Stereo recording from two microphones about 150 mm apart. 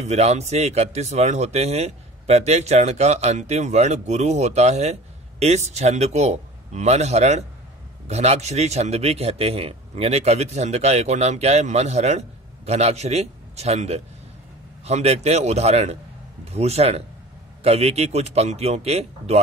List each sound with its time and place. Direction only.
0.0 s a man's voice: 45° right (ahead or behind)